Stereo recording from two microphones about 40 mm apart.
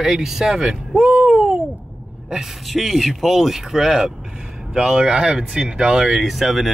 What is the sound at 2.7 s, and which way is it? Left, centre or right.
Speech, centre.